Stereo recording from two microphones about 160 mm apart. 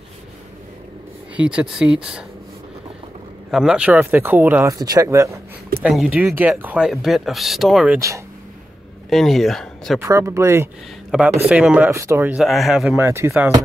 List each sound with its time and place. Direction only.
1.3 s speech: 5° right (ahead or behind)
3.5 s speech: 5° right (ahead or behind)
9.1 s speech: centre (ahead or behind)
9.9 s speech: 20° right (ahead or behind); by 12.9 s centre (ahead or behind)
12.9 s speech: 15° right (ahead or behind)